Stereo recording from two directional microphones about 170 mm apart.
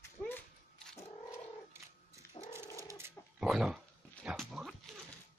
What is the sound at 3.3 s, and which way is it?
Dog, 5° right (ahead or behind).